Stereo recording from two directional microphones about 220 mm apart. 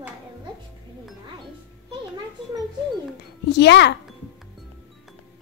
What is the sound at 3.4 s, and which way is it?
Speech, 50° left (ahead or behind).